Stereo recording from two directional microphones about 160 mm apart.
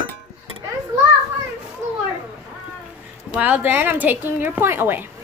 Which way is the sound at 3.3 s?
10° right (ahead or behind).